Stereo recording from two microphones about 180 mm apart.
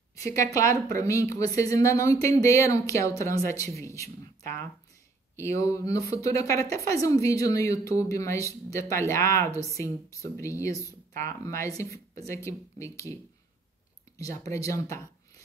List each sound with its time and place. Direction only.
0.3 s speech: 15° left (ahead or behind)
14.1 s speech: 20° left (ahead or behind)